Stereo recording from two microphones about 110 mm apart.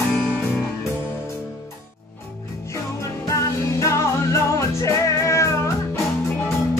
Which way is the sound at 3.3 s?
30° left (ahead or behind).